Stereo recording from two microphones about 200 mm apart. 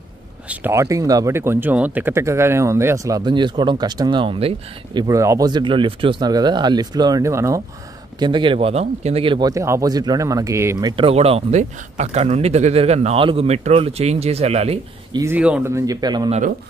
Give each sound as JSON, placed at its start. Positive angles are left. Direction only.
{"t": 0.5, "sound": "speech", "side_deg": -15}
{"t": 5.0, "sound": "speech", "side_deg": -15}
{"t": 15.1, "sound": "speech", "side_deg": -10}